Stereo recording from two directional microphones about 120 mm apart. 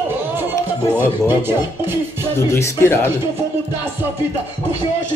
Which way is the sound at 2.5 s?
20° left (ahead or behind).